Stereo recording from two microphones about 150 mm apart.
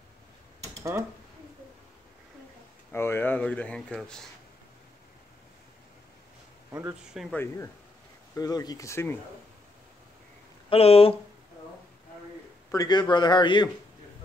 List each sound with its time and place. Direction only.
2.9 s speech: 15° left (ahead or behind)
6.7 s speech: 20° right (ahead or behind)
7.3 s speech: 15° left (ahead or behind)
10.7 s a man's voice: 40° left (ahead or behind)
12.7 s a man's voice: 25° left (ahead or behind)